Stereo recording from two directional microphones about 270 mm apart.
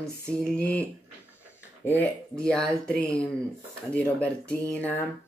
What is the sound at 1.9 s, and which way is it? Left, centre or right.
Speech, centre.